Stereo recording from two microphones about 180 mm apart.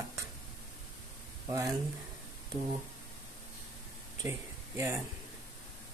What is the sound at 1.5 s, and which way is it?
Speech, 20° right (ahead or behind).